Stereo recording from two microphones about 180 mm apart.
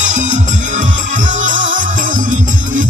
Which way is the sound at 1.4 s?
45° right (ahead or behind).